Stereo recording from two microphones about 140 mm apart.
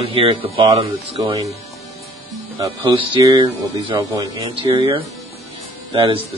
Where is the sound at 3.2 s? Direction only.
25° right (ahead or behind).